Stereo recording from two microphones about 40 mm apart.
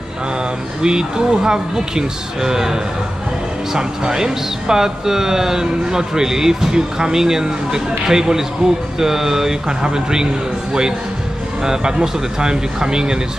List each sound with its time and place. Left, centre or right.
0.8 s speech: centre